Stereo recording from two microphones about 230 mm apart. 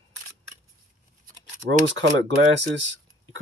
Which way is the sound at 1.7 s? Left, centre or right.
Right.